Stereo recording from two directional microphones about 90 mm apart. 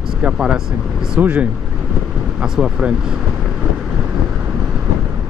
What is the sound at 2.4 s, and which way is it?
Speech, 10° right (ahead or behind).